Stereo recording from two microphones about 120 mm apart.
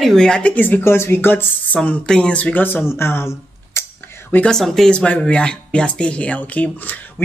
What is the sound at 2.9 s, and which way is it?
Camera, 20° left (ahead or behind).